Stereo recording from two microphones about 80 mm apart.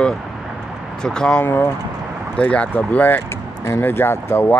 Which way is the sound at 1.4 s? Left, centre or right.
Left.